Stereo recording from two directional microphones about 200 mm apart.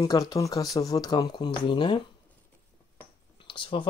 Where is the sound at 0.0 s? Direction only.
20° left (ahead or behind).